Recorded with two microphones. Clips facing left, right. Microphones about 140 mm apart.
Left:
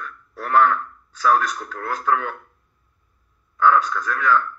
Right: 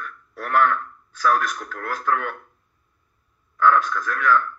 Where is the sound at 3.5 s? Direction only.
30° left (ahead or behind).